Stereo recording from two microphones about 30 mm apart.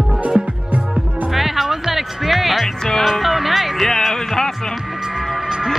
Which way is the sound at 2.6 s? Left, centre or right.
Centre.